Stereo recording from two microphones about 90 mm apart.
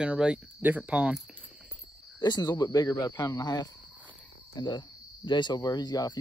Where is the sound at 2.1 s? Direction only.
50° left (ahead or behind).